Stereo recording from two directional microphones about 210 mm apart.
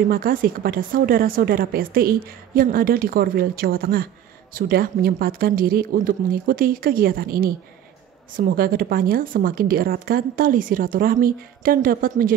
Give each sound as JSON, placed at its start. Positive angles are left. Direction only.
{"t": 0.1, "sound": "a woman's voice", "side_deg": -40}